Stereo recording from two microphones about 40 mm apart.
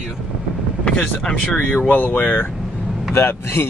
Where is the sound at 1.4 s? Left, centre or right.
Left.